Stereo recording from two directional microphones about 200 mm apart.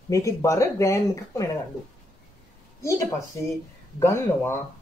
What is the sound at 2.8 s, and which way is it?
Speech, 15° left (ahead or behind).